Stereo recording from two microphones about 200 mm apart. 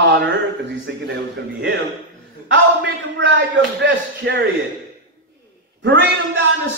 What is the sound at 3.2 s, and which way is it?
Speech, 65° right (ahead or behind).